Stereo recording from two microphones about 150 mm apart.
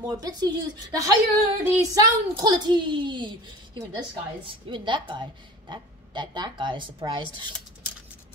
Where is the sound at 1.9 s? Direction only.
25° right (ahead or behind).